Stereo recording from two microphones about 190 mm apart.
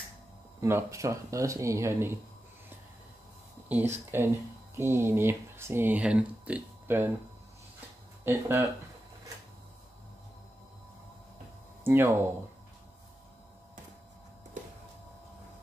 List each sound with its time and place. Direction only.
0.6 s speech: 15° right (ahead or behind)
3.6 s speech: 10° right (ahead or behind)
8.2 s speech: 15° right (ahead or behind)
11.8 s speech: 10° right (ahead or behind)